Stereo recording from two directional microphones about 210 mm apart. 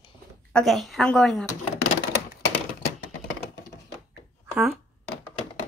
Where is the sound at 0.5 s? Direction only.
5° left (ahead or behind).